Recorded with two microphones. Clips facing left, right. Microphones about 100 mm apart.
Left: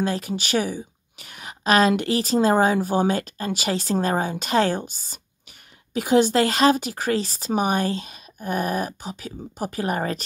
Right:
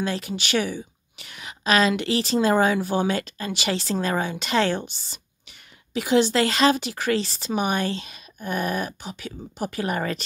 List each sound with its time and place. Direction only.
0.0 s speech: 45° left (ahead or behind)